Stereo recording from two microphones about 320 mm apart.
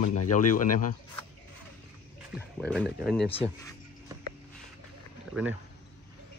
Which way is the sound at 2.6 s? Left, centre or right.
Centre.